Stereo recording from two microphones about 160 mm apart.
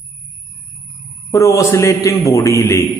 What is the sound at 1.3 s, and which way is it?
A man's voice, 20° left (ahead or behind).